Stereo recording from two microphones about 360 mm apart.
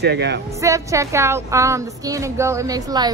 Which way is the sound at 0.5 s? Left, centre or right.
Centre.